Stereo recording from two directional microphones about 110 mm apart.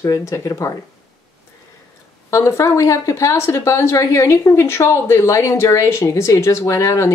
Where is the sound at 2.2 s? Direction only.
25° left (ahead or behind).